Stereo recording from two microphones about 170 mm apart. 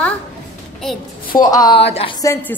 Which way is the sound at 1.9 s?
35° left (ahead or behind).